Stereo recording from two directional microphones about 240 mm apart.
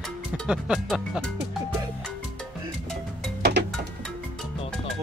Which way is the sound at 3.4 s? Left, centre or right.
Right.